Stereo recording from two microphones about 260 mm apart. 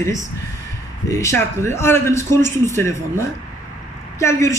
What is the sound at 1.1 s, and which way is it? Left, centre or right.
A man's voice, centre.